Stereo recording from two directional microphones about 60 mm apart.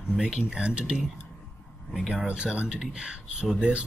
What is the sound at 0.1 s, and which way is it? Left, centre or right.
Speech, centre.